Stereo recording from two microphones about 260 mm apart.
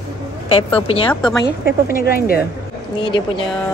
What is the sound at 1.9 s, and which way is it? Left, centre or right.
Speech, left.